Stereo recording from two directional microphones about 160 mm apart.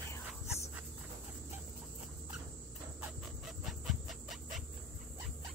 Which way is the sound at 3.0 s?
Centre (ahead or behind).